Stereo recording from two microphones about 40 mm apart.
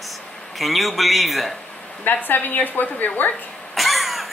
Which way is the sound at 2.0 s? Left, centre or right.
Left.